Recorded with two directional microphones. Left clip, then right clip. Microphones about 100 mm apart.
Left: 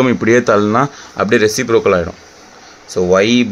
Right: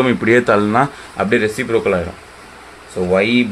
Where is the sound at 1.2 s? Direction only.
90° left.